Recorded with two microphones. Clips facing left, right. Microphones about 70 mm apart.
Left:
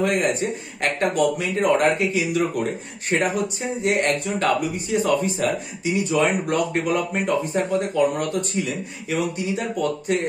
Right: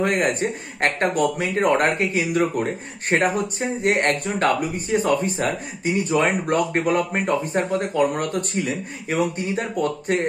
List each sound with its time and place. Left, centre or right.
0.0 s speech: right